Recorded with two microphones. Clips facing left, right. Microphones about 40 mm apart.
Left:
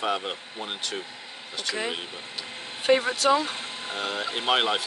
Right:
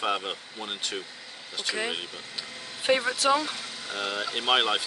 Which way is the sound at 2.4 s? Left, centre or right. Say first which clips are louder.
Left 2 dB; left.